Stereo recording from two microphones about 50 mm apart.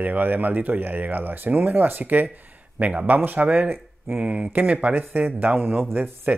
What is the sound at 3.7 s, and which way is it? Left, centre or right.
Speech, right.